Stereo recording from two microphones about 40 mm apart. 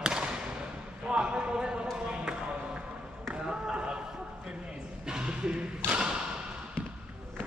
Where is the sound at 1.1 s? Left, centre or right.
Right.